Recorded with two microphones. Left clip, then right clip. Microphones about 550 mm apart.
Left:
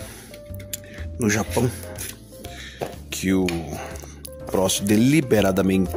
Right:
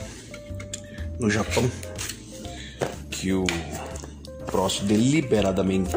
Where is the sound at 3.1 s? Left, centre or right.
Left.